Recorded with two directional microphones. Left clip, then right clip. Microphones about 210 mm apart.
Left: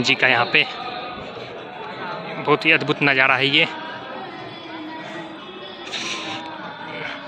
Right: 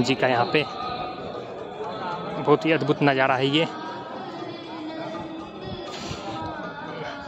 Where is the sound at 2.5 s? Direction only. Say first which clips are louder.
Left 3 dB; 15° right (ahead or behind).